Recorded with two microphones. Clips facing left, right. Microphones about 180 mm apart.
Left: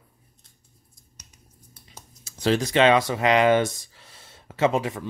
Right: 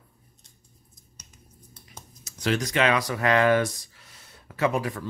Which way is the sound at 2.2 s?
30° left (ahead or behind).